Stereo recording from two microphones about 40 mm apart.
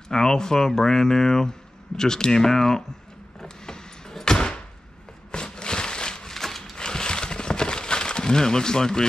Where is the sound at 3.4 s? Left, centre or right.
Centre.